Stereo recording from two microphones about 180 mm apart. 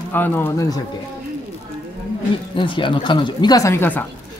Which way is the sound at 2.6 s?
25° left (ahead or behind).